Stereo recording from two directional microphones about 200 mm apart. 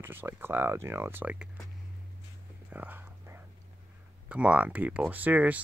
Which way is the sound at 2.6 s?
10° right (ahead or behind).